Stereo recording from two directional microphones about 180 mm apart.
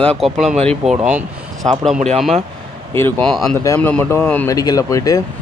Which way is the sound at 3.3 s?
Centre (ahead or behind).